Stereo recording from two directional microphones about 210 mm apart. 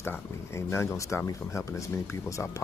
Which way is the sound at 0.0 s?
10° left (ahead or behind).